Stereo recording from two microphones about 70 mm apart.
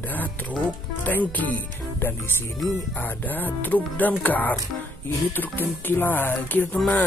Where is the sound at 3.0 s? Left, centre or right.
Left.